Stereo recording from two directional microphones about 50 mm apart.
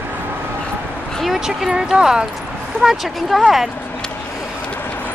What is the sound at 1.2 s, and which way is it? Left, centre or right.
Speech, centre.